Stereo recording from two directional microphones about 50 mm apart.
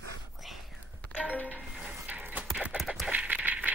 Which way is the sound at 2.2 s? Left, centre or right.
Right.